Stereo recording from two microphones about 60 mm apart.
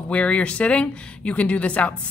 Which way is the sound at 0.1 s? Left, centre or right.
Centre.